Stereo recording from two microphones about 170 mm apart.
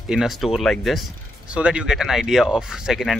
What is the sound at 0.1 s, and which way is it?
Speech, 5° right (ahead or behind).